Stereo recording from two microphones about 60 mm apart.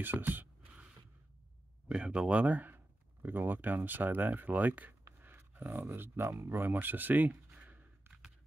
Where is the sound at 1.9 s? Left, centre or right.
Centre.